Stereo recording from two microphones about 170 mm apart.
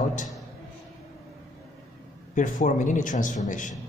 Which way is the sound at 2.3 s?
50° left (ahead or behind).